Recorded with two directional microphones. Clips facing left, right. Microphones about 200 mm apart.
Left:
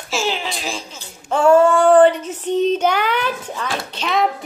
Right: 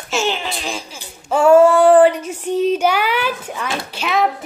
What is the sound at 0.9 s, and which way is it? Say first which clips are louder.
Female singing: right 3 dB; 10° right (ahead or behind).